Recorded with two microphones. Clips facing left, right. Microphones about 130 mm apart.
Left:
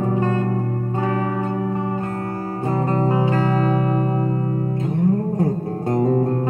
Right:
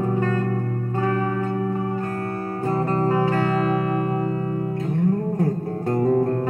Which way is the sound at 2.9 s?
20° left (ahead or behind).